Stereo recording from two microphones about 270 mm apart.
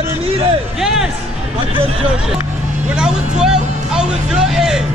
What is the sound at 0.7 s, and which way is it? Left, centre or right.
Music, centre.